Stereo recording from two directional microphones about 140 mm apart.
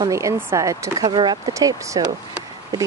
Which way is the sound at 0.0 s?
20° right (ahead or behind).